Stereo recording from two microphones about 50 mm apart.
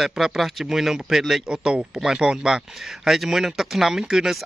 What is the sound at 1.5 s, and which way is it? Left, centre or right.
Speech, centre.